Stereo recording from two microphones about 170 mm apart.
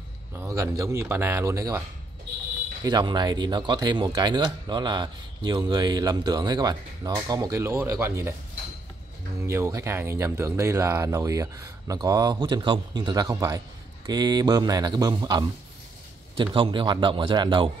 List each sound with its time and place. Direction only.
0.4 s speech: 20° right (ahead or behind)
2.8 s speech: 25° right (ahead or behind)
9.4 s speech: 15° right (ahead or behind)